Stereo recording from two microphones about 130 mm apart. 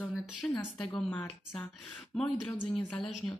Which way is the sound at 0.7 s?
5° left (ahead or behind).